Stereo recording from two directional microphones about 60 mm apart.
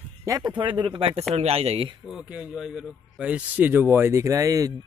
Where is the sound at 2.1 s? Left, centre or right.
Centre.